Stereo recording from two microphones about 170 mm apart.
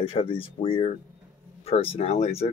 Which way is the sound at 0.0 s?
35° left (ahead or behind).